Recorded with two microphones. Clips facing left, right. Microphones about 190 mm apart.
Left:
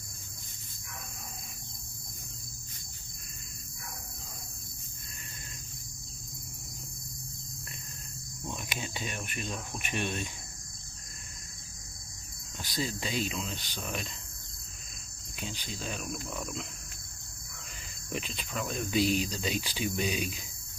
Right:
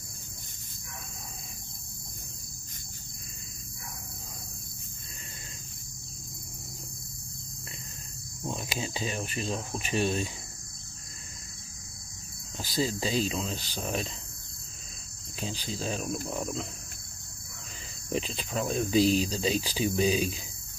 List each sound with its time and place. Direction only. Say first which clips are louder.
8.5 s speech: right 5 dB; 30° right (ahead or behind)
12.5 s speech: right 5 dB; 35° right (ahead or behind)
15.4 s speech: right 5 dB; 35° right (ahead or behind)
18.1 s speech: right 5 dB; 35° right (ahead or behind)